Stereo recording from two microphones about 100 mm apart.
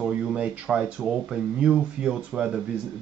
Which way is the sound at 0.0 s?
10° right (ahead or behind).